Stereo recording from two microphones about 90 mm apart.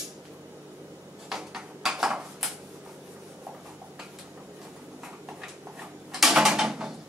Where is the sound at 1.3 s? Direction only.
5° right (ahead or behind).